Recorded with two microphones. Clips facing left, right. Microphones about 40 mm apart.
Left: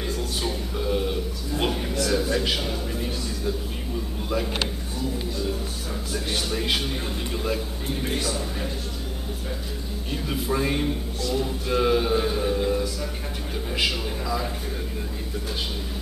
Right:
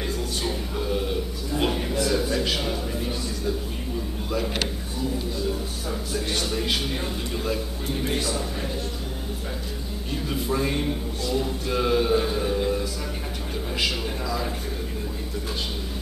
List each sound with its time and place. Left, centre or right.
0.4 s a sound: centre
6.1 s speech: centre
7.3 s music: centre
10.2 s music: centre